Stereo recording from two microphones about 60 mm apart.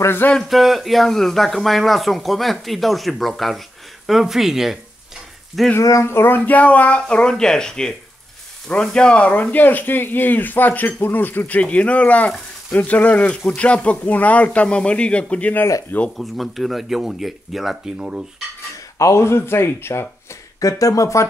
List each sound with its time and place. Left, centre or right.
0.0 s speech: left
0.4 s speech: centre
5.8 s speech: left
6.0 s speech: left; by 15.5 s centre
16.2 s speech: centre
17.9 s cutlery: centre
18.9 s speech: left
20.6 s speech: left